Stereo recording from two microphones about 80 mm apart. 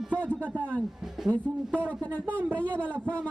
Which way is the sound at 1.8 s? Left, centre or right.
Centre.